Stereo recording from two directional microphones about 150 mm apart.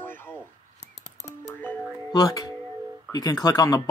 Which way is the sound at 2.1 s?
25° left (ahead or behind).